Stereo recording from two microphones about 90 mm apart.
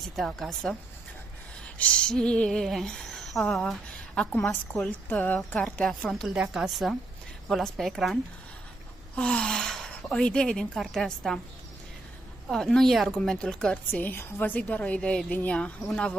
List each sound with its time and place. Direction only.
0.1 s speech: 5° left (ahead or behind)
1.8 s a sound: 15° left (ahead or behind)
4.8 s a woman's voice: 15° left (ahead or behind)
5.9 s speech: 5° left (ahead or behind)
6.3 s a woman's voice: 10° right (ahead or behind)
12.4 s speech: 5° left (ahead or behind)
13.8 s a woman's voice: 20° left (ahead or behind)